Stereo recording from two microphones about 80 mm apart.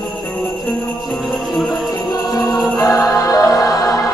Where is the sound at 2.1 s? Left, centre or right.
Left.